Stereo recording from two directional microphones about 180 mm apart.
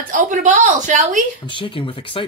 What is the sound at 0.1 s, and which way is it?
A woman's voice, 45° right (ahead or behind).